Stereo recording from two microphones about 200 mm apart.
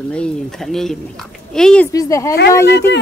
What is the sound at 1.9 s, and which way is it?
Speech, 15° left (ahead or behind).